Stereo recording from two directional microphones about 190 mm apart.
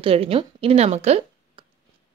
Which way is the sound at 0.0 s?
30° right (ahead or behind).